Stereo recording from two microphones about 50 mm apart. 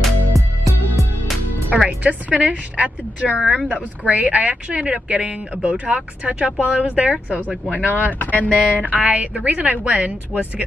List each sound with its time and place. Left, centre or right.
0.3 s music: centre
2.0 s speech: right
7.4 s speech: left
8.9 s speech: right